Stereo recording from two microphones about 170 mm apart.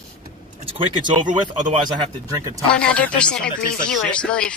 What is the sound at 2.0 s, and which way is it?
Speech, 20° right (ahead or behind).